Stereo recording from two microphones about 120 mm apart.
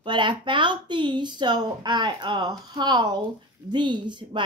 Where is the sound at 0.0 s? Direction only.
40° right (ahead or behind).